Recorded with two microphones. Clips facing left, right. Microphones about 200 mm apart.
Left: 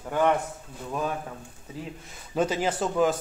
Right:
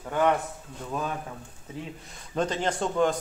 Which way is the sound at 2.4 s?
5° left (ahead or behind).